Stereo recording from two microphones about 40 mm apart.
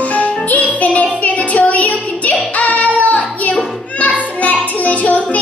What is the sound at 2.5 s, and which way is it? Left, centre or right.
Child singing, left.